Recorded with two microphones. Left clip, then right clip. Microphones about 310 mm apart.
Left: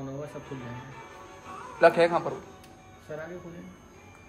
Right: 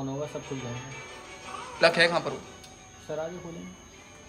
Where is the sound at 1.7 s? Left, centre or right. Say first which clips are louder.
Left 1 dB; centre.